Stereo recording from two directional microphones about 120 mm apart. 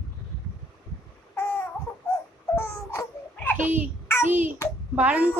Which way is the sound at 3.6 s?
15° right (ahead or behind).